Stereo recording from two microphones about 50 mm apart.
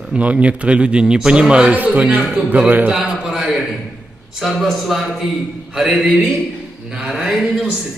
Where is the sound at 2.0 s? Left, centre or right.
Right.